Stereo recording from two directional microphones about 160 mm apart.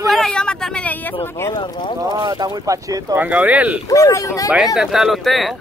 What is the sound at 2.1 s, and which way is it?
Speech, 25° right (ahead or behind).